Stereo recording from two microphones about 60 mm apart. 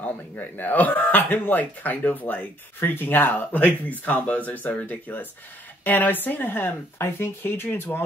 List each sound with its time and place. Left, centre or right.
0.0 s speech: left